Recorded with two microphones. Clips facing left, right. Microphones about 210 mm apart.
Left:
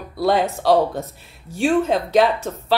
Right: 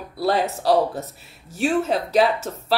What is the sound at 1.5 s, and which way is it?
Speech, 5° right (ahead or behind).